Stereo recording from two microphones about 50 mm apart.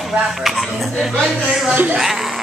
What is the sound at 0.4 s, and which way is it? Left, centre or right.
Speech, centre.